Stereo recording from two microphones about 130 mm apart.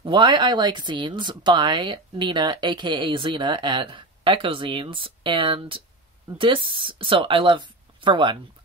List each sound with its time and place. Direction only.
0.0 s speech: 35° right (ahead or behind)